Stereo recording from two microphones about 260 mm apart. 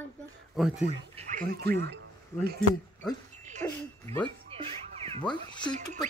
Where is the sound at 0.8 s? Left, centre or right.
Right.